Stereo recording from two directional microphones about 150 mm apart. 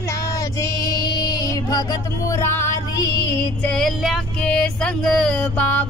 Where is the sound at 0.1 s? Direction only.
20° left (ahead or behind).